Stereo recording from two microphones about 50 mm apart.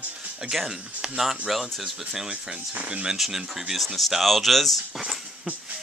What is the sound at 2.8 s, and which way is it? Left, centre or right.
Speech, right.